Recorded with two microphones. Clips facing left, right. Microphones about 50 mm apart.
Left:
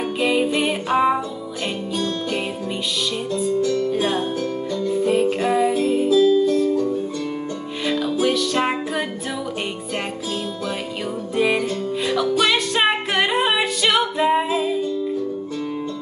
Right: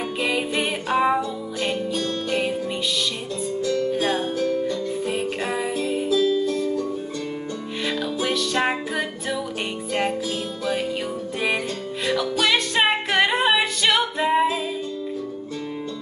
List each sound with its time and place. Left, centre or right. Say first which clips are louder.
0.2 s music: left 5 dB; centre
4.1 s music: left 1 dB; left
4.6 s music: left 5 dB; centre
7.8 s music: left 5 dB; centre
11.3 s music: left 5 dB; centre
12.7 s a capella: left 1 dB; centre